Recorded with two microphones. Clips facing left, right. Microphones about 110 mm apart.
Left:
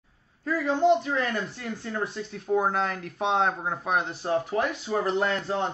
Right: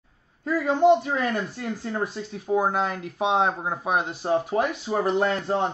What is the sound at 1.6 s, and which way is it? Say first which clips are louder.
Speech: right 4 dB; 30° right (ahead or behind).